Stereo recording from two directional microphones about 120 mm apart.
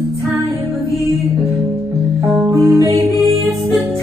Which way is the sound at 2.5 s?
25° right (ahead or behind).